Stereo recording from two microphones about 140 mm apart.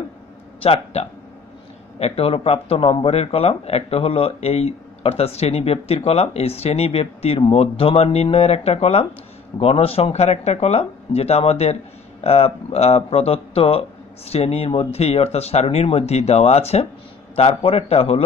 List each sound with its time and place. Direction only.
0.6 s a man's voice: 45° left (ahead or behind)